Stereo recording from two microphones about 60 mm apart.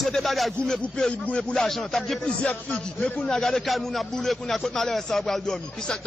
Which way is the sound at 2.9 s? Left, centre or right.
Centre.